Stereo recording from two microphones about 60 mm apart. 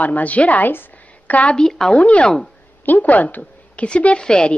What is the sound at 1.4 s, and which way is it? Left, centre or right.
Speech, centre.